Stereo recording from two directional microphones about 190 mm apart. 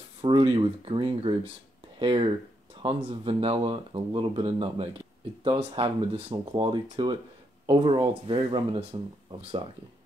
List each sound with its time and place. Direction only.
0.2 s speech: 25° right (ahead or behind)